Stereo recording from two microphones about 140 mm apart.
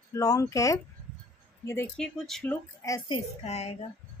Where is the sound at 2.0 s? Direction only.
5° left (ahead or behind).